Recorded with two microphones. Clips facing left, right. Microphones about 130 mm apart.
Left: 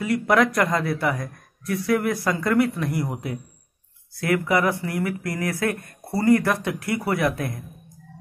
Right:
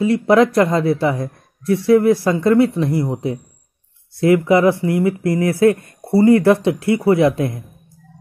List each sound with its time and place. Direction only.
0.0 s speech: 30° right (ahead or behind)